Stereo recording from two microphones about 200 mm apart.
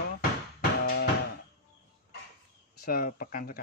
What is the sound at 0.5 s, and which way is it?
Music, 50° left (ahead or behind).